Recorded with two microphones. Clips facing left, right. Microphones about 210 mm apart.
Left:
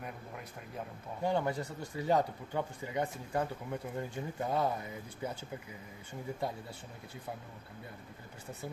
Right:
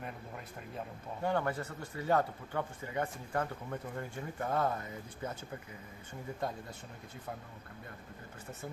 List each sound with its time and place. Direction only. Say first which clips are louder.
1.2 s speech: left 1 dB; 15° left (ahead or behind)